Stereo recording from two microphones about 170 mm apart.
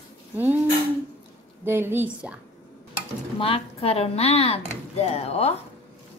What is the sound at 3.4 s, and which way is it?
A woman's voice, 35° left (ahead or behind).